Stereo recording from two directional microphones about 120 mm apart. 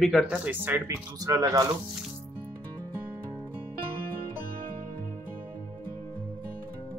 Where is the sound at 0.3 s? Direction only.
15° right (ahead or behind).